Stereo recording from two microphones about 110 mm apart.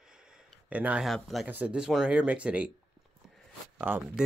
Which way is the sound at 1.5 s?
15° right (ahead or behind).